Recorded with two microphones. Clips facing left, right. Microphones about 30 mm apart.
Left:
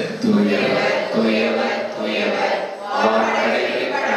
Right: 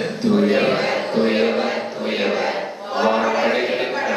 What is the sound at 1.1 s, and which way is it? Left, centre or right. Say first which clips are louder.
Speech: right 2 dB; centre.